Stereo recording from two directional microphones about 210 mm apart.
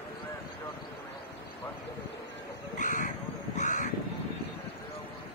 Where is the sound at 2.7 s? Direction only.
35° left (ahead or behind).